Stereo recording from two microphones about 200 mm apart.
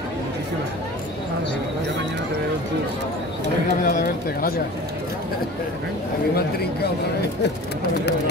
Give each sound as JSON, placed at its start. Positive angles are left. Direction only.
{"t": 3.8, "sound": "speech", "side_deg": 45}
{"t": 6.3, "sound": "speech", "side_deg": 50}